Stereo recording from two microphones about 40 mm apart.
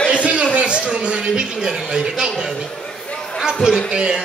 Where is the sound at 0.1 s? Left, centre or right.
Right.